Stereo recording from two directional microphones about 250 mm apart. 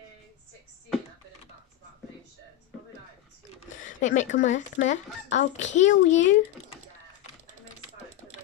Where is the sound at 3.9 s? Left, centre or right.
Left.